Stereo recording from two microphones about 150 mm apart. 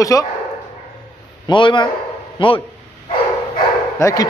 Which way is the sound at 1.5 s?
30° left (ahead or behind).